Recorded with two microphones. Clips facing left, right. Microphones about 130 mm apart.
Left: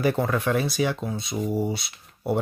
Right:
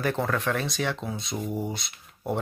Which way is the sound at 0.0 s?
10° left (ahead or behind).